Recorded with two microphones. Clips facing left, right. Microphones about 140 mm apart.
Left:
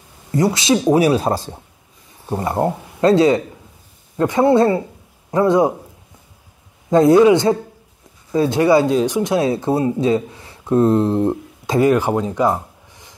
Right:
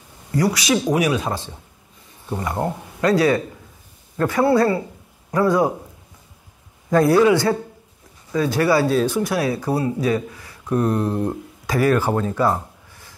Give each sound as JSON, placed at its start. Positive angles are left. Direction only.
{"t": 0.3, "sound": "speech", "side_deg": 25}
{"t": 6.9, "sound": "speech", "side_deg": 20}